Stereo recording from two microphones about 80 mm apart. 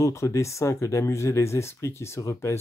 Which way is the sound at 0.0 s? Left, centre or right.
Left.